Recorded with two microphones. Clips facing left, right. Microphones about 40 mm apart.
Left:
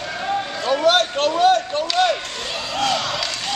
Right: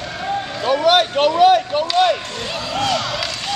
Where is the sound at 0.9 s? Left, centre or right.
Centre.